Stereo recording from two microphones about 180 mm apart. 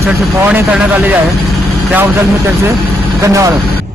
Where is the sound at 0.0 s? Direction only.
15° right (ahead or behind).